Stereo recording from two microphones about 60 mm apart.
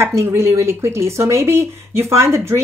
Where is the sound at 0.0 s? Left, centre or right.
Right.